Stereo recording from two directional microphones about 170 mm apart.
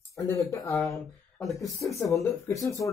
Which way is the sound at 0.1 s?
15° left (ahead or behind).